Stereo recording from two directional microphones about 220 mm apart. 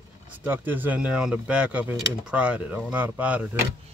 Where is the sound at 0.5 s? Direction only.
10° right (ahead or behind).